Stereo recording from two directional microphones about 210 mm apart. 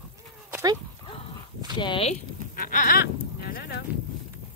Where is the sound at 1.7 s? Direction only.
25° left (ahead or behind).